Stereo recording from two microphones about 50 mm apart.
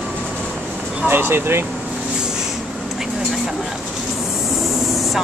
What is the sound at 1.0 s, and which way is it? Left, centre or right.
Speech, right.